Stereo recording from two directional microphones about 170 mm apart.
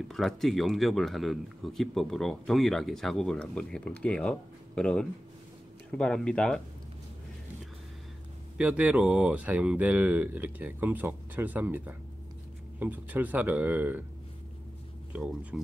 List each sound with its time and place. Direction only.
0.1 s a man's voice: centre (ahead or behind)
8.5 s speech: 10° right (ahead or behind)
15.1 s a man's voice: 5° right (ahead or behind)